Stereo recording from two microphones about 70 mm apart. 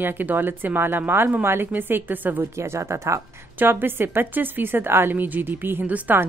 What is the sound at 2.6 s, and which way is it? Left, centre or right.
Speech, right.